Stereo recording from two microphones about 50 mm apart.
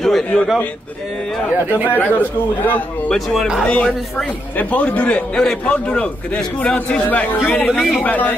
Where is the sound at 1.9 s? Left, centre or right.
Left.